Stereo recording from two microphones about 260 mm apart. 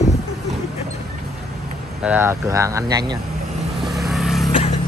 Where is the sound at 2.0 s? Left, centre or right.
Centre.